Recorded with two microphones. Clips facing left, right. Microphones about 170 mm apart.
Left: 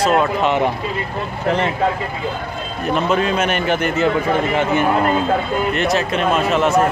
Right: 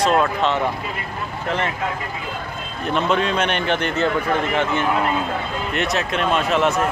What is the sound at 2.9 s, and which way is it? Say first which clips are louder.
Speech: left 2 dB; 5° left (ahead or behind).